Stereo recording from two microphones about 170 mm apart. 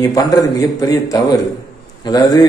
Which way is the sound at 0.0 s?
20° left (ahead or behind).